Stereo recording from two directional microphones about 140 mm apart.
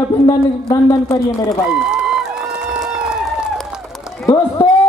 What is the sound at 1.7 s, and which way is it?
Run, 5° right (ahead or behind).